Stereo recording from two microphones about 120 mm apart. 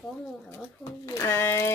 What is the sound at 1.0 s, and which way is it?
Speech, 25° left (ahead or behind).